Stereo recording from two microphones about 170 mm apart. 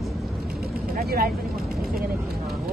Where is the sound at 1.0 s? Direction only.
60° right (ahead or behind).